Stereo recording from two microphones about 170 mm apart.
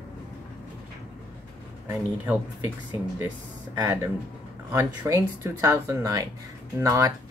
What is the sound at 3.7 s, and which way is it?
Speech, 20° right (ahead or behind).